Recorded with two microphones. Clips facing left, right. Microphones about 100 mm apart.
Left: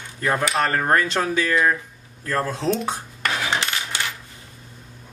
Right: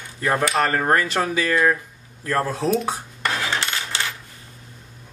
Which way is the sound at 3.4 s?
15° left (ahead or behind).